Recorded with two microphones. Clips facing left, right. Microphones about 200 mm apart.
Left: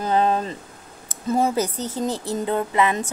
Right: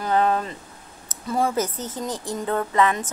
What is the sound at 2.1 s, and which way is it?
Speech, 5° left (ahead or behind).